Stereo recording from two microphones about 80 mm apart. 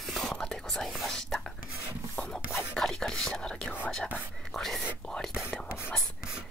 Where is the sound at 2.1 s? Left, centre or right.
Centre.